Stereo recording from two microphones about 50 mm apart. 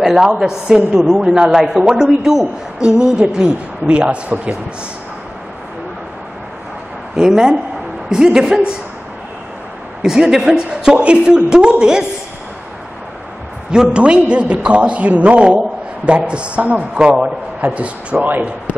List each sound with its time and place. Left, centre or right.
0.0 s a woman's voice: centre
7.2 s a woman's voice: centre
10.0 s a woman's voice: centre
13.7 s a man's voice: centre